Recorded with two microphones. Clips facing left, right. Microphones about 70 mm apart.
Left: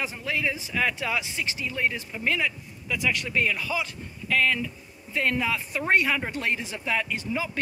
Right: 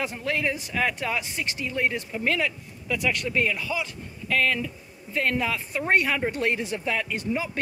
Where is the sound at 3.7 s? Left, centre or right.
Centre.